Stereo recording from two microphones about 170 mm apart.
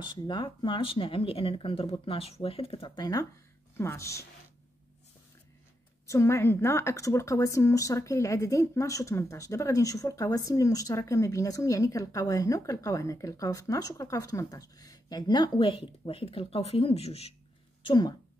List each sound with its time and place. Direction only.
0.0 s speech: 25° left (ahead or behind)
6.0 s a woman's voice: 15° left (ahead or behind); by 17.3 s 35° left (ahead or behind)
17.8 s a woman's voice: 25° left (ahead or behind)